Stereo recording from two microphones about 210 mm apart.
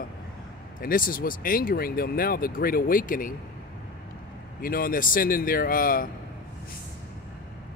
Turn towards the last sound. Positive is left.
turn(degrees=40)  # may be behind; listen again after turning